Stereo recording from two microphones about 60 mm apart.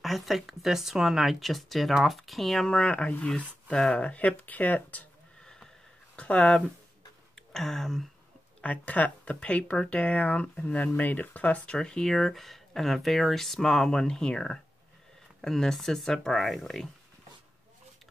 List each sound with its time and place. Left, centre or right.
0.0 s speech: centre
2.7 s speech: centre
6.1 s speech: left
7.5 s speech: centre
8.5 s speech: left; by 16.9 s centre